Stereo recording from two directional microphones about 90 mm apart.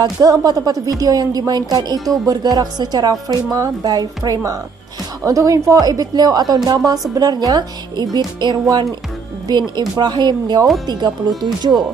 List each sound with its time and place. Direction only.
0.0 s speech: 45° right (ahead or behind)